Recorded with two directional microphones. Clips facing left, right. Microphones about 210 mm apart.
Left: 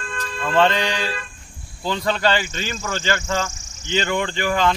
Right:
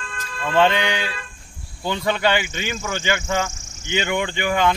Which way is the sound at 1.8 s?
15° right (ahead or behind).